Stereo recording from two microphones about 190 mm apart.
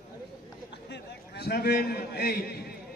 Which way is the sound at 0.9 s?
60° left (ahead or behind).